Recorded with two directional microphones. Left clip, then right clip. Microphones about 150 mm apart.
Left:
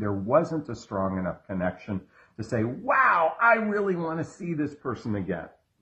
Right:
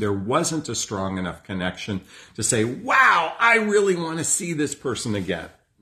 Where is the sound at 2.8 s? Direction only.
20° right (ahead or behind).